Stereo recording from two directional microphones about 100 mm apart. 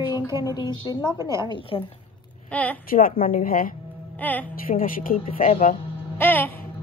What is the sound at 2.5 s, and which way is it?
Speech, 15° left (ahead or behind).